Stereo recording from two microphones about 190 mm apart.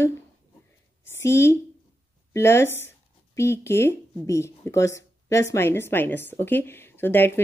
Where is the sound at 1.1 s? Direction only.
15° left (ahead or behind).